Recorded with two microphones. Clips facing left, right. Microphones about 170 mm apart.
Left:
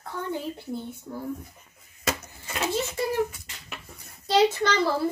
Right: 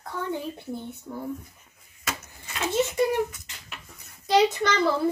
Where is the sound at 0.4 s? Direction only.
20° right (ahead or behind).